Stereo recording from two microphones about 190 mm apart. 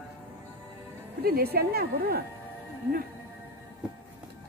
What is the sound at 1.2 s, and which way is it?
Speech, 55° right (ahead or behind).